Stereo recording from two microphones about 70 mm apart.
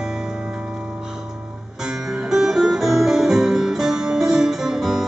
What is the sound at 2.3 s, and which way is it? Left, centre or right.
Music, centre.